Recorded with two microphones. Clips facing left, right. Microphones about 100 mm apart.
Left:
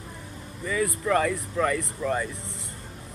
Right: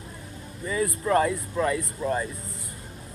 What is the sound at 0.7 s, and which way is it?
Speech, 35° right (ahead or behind).